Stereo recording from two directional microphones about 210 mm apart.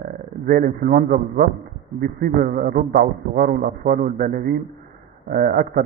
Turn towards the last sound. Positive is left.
turn(degrees=-45)  # may be behind; listen again after turning